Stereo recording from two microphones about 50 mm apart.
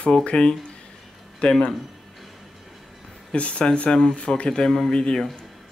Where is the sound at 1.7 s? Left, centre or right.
Centre.